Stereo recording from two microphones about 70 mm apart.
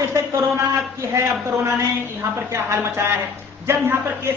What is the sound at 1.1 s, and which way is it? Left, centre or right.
A woman's voice, right.